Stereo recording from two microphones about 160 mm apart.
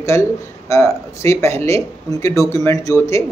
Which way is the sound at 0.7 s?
15° left (ahead or behind).